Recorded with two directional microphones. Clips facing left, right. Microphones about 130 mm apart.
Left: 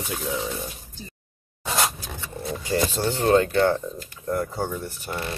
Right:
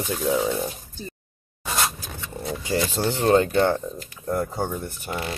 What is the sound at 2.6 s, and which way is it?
Speech, 20° right (ahead or behind).